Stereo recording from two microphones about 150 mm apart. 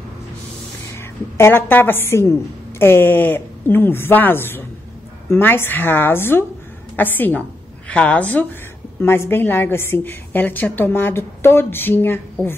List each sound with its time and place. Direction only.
0.9 s a woman's voice: 15° left (ahead or behind)